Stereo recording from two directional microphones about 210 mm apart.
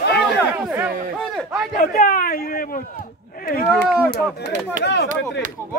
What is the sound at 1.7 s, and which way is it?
Speech, 45° left (ahead or behind).